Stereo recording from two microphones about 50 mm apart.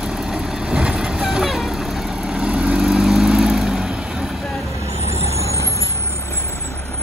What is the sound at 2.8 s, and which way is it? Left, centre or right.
Vehicle, centre.